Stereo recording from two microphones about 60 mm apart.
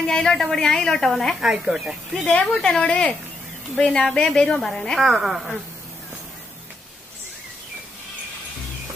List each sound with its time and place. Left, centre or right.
0.0 s a woman's voice: centre
1.4 s speech: centre
2.2 s a woman's voice: left
2.6 s a woman's voice: centre
5.0 s speech: centre